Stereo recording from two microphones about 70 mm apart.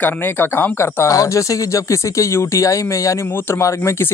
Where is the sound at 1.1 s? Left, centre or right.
Left.